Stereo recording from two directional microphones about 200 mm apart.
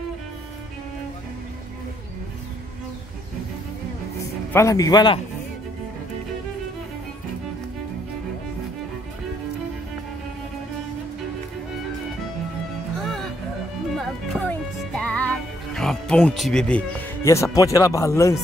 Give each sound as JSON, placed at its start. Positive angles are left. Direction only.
{"t": 4.5, "sound": "speech", "side_deg": 15}
{"t": 12.9, "sound": "music", "side_deg": 0}